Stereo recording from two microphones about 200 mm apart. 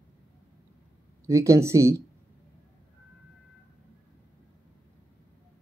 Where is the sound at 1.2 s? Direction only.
15° right (ahead or behind).